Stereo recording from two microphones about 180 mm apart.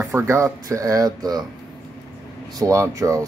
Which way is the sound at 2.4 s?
20° right (ahead or behind).